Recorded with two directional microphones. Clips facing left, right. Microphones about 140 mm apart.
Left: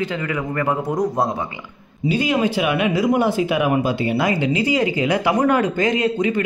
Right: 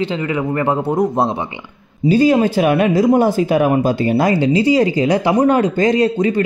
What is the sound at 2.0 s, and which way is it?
Speech, 40° right (ahead or behind).